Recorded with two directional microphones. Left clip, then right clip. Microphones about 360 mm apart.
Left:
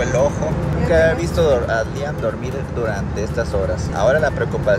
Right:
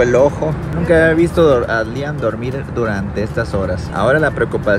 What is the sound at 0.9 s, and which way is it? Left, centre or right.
Speech, centre.